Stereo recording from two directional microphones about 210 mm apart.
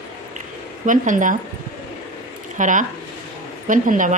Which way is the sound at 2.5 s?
35° right (ahead or behind).